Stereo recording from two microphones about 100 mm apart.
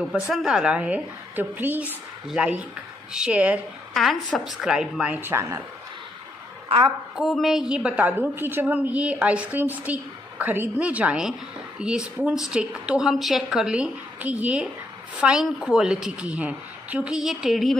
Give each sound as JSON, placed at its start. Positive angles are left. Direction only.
{"t": 0.3, "sound": "a woman's voice", "side_deg": -5}
{"t": 3.9, "sound": "a woman's voice", "side_deg": 0}
{"t": 5.1, "sound": "speech", "side_deg": -25}
{"t": 7.2, "sound": "a woman's voice", "side_deg": 0}
{"t": 7.9, "sound": "a woman's voice", "side_deg": -20}